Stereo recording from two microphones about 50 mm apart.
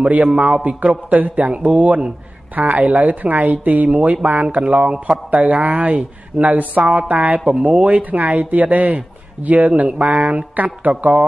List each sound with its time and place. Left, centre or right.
0.0 s a man's voice: right